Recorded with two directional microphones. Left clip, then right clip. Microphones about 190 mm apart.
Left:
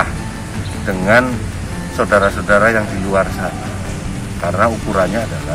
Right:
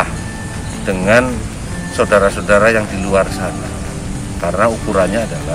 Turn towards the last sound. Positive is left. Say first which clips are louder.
# right 2 dB
turn(degrees=-25)  # may be behind; listen again after turning